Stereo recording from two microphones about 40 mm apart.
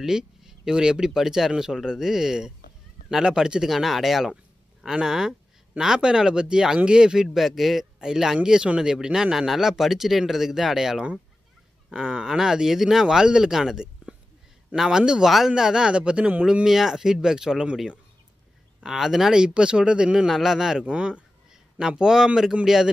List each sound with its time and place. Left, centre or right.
0.0 s speech: centre
1.1 s speech: centre
3.7 s speech: centre
7.3 s speech: centre
11.9 s speech: centre
13.0 s speech: centre
16.6 s speech: centre
18.8 s speech: centre
19.4 s speech: right
20.2 s speech: centre
20.8 s speech: right
21.7 s speech: centre